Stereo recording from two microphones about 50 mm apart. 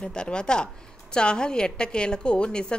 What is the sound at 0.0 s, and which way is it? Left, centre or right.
A woman's voice, centre.